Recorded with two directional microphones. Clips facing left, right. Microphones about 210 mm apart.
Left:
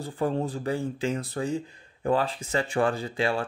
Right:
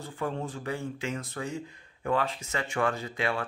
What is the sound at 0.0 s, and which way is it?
Speech, 35° left (ahead or behind).